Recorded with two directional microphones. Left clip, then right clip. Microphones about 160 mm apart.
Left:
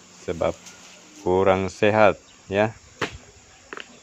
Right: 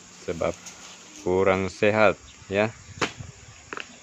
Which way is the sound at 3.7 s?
10° right (ahead or behind).